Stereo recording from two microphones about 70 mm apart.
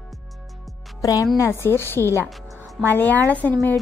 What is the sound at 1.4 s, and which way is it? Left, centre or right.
A woman's voice, left.